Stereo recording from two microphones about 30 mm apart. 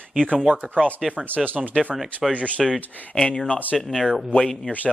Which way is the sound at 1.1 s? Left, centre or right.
Right.